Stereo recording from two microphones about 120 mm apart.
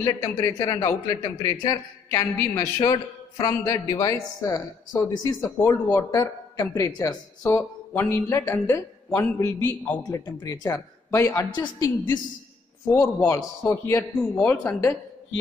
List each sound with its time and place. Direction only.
0.4 s a man's voice: 30° left (ahead or behind)
10.0 s a man's voice: 35° left (ahead or behind)
13.0 s a man's voice: 25° left (ahead or behind)